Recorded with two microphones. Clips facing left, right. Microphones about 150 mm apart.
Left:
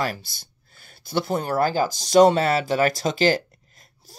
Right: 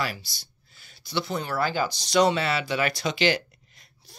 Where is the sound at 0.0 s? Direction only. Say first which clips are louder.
Left 4 dB; 50° left (ahead or behind).